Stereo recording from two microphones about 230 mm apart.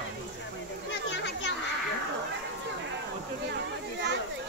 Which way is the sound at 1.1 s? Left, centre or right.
Left.